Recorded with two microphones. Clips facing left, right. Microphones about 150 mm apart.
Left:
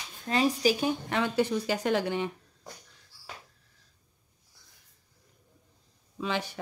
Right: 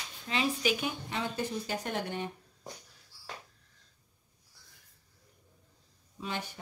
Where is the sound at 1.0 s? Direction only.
75° left (ahead or behind).